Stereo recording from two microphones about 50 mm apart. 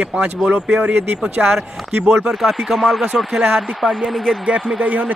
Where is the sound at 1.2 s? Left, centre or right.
Centre.